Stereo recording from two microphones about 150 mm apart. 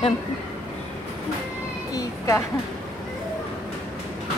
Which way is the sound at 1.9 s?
20° left (ahead or behind).